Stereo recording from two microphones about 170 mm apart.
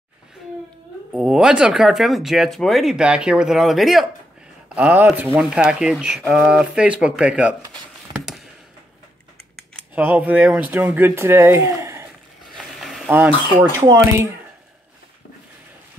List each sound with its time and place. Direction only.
1.1 s speech: 5° right (ahead or behind)
9.9 s speech: 10° right (ahead or behind)
12.5 s a sound: centre (ahead or behind)
13.1 s speech: 10° right (ahead or behind)